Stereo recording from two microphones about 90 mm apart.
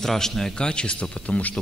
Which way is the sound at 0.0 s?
5° left (ahead or behind).